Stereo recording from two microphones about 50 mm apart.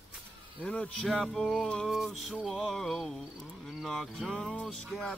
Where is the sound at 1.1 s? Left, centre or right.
Centre.